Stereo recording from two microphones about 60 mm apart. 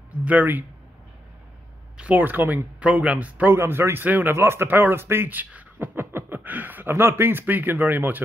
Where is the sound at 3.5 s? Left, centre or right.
Right.